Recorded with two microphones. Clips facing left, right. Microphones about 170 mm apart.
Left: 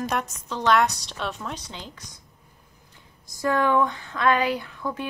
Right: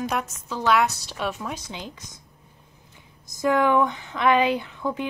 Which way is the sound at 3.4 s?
15° right (ahead or behind).